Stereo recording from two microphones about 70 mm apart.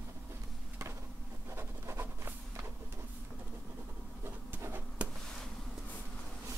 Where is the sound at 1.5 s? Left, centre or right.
Right.